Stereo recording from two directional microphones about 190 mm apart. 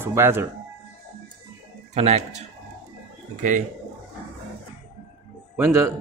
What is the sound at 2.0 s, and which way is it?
Speech, 35° right (ahead or behind).